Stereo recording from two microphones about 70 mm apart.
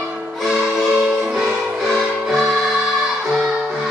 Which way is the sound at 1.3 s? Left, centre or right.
Centre.